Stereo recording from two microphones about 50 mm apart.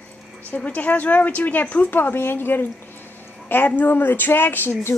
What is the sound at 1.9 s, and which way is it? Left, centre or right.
Speech, left.